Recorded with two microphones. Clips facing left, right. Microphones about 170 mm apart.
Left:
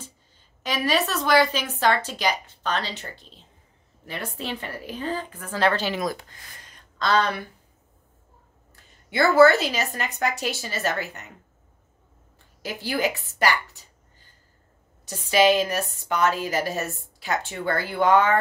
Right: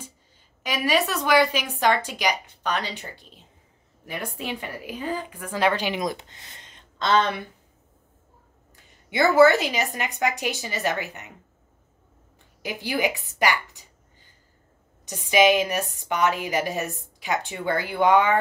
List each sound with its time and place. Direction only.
0.7 s a woman's voice: 10° right (ahead or behind)
9.1 s a woman's voice: 20° right (ahead or behind)
12.6 s a woman's voice: 15° right (ahead or behind)
15.0 s a woman's voice: 15° right (ahead or behind)